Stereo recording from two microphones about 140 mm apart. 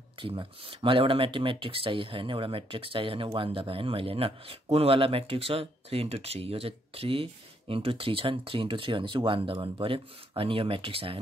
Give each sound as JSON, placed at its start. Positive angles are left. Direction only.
{"t": 0.2, "sound": "speech", "side_deg": -40}